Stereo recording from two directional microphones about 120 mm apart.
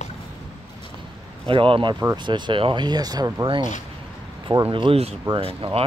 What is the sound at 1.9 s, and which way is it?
Speech, 25° right (ahead or behind).